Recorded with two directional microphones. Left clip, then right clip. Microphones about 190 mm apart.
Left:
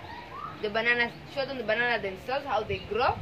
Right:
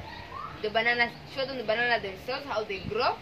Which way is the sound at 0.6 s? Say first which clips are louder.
Even; 55° left (ahead or behind).